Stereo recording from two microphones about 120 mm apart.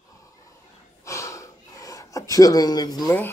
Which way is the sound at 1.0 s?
25° left (ahead or behind).